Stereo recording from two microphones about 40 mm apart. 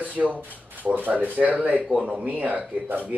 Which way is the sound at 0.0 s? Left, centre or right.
Right.